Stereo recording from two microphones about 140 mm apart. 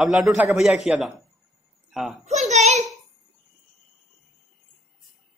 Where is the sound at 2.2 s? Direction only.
55° right (ahead or behind).